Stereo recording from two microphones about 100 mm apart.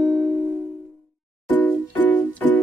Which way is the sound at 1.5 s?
15° left (ahead or behind).